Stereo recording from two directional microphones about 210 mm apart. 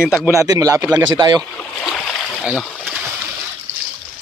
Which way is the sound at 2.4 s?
5° right (ahead or behind).